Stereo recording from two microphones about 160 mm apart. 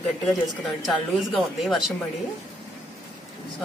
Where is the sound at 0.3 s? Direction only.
Centre (ahead or behind).